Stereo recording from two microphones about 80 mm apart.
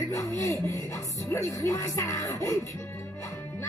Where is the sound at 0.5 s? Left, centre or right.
Left.